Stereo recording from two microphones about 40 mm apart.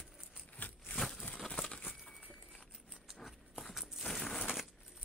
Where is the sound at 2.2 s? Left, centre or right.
Centre.